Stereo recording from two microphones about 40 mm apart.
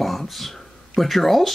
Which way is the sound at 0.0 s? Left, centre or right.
Centre.